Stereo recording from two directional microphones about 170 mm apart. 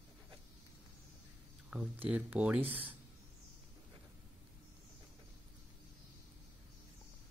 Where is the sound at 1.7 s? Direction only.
5° right (ahead or behind).